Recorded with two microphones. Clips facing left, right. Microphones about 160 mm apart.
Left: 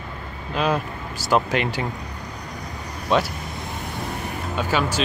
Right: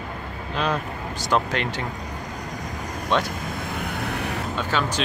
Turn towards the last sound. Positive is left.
turn(degrees=10)  # may be behind; listen again after turning